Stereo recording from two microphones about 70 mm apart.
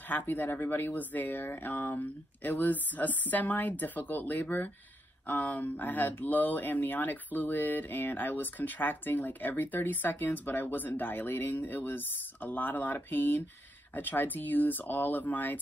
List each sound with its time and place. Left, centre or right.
0.1 s speech: left